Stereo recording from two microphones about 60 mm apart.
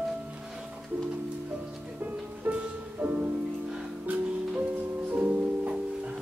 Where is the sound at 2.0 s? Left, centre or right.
Right.